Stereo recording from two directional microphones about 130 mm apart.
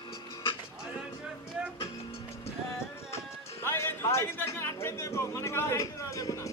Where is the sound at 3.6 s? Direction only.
20° left (ahead or behind).